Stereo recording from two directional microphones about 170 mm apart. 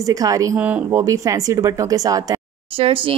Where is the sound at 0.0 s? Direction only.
20° right (ahead or behind).